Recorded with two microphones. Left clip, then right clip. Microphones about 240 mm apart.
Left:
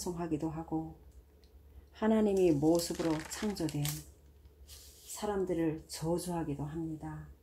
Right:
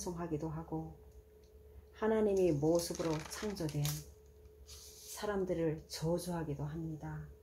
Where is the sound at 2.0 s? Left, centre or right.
Left.